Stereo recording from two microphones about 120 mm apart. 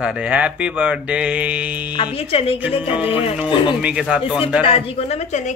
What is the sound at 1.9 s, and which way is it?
Speech, 50° left (ahead or behind).